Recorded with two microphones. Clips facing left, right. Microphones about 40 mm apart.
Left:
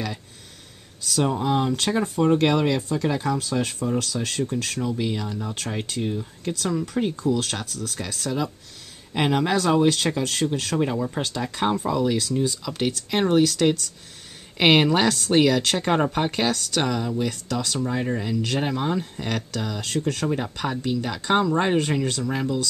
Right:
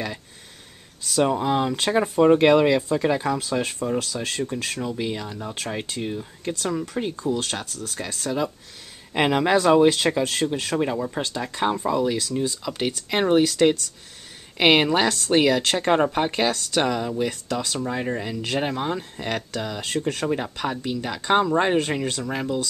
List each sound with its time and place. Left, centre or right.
1.0 s speech: centre
10.9 s speech: centre